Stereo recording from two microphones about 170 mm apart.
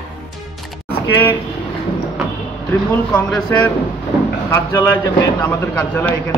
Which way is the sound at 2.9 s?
10° left (ahead or behind).